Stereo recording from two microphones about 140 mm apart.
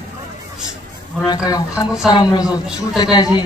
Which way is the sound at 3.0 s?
30° left (ahead or behind).